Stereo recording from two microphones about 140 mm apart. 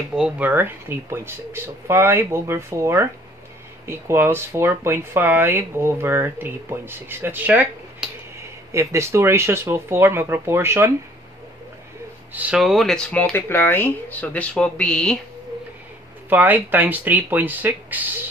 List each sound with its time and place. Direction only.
0.1 s speech: 10° right (ahead or behind)
12.4 s speech: 5° right (ahead or behind)
16.3 s speech: 10° right (ahead or behind)